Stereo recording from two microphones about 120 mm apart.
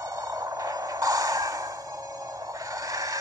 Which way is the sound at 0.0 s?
30° right (ahead or behind).